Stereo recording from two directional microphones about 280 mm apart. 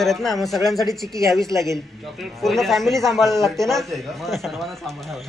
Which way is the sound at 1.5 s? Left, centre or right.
Centre.